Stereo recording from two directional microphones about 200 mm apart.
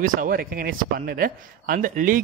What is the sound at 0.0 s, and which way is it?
Speech, 45° right (ahead or behind).